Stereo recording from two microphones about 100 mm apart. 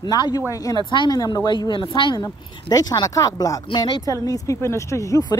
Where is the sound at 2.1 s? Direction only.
40° left (ahead or behind).